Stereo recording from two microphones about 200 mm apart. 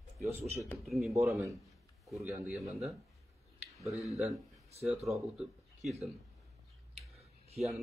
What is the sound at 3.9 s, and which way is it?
Speech, 15° left (ahead or behind).